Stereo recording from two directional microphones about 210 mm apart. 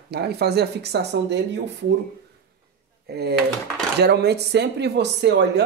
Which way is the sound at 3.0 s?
50° right (ahead or behind).